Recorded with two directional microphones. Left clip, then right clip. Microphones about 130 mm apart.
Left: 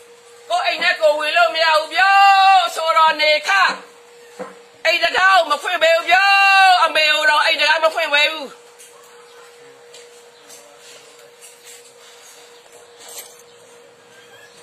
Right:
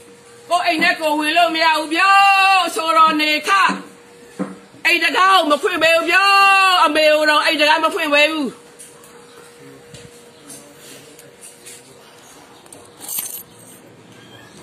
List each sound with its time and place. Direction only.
0.5 s a man's voice: centre (ahead or behind)
1.1 s speech: 10° left (ahead or behind)
5.1 s speech: 25° left (ahead or behind)